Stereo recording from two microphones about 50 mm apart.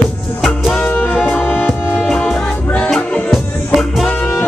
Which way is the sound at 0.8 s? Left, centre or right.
Left.